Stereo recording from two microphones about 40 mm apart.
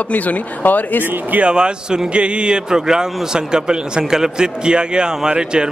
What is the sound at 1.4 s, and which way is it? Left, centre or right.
A man's voice, right.